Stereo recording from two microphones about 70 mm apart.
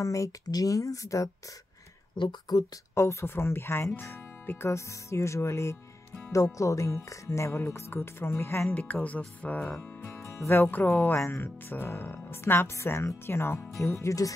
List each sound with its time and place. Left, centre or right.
0.0 s speech: left
2.5 s speech: left
2.9 s speech: left
4.6 s speech: left
7.6 s speech: left
8.7 s speech: left
10.2 s music: left
10.6 s speech: left
11.1 s speech: left